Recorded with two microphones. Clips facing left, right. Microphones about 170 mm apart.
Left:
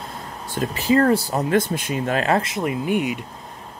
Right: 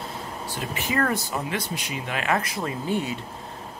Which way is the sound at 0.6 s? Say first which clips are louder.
Left 8 dB; 35° left (ahead or behind).